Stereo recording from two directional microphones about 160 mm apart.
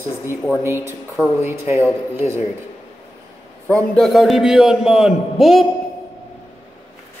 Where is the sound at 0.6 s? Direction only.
15° right (ahead or behind).